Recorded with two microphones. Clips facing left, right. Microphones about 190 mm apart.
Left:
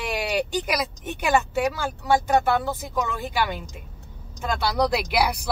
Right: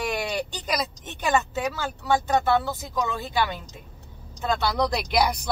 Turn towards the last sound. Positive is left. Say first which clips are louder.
# left 1 dB
turn(degrees=5)  # may be behind; listen again after turning